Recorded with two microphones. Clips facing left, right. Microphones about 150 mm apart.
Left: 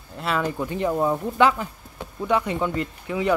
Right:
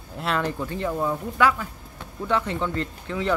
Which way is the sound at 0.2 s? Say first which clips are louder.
Left 1 dB; 5° left (ahead or behind).